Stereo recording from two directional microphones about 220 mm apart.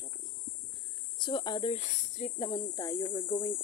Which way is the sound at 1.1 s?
20° left (ahead or behind).